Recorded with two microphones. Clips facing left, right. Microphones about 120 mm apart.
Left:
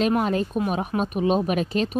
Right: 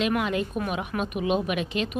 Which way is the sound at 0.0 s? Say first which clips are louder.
Left 4 dB; 40° left (ahead or behind).